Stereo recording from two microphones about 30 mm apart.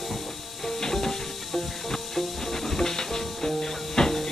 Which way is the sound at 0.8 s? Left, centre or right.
Centre.